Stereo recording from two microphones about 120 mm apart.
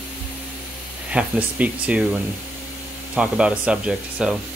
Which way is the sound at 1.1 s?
10° right (ahead or behind).